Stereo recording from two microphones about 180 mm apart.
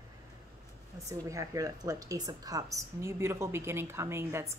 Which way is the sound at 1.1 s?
20° right (ahead or behind).